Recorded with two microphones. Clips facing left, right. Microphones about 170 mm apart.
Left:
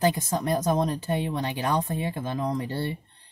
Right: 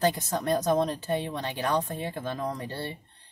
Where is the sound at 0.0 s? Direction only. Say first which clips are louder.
Left 2 dB; 10° left (ahead or behind).